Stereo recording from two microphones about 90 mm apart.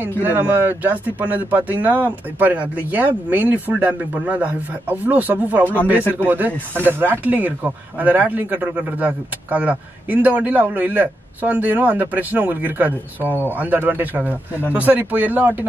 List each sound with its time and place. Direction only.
0.2 s a man's voice: 25° right (ahead or behind)